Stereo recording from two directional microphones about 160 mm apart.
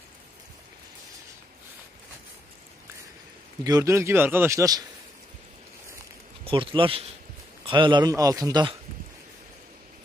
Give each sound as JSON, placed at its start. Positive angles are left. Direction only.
{"t": 3.6, "sound": "a man's voice", "side_deg": -20}
{"t": 6.4, "sound": "a man's voice", "side_deg": -35}